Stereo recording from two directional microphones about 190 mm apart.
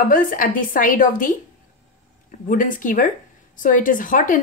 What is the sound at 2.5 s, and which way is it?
Speech, 45° left (ahead or behind).